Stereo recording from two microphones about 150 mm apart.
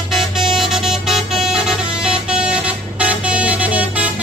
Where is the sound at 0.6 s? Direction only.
5° right (ahead or behind).